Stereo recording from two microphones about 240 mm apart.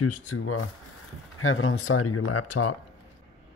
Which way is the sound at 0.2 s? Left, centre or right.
Left.